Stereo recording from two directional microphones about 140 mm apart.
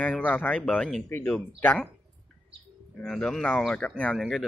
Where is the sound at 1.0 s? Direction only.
15° left (ahead or behind).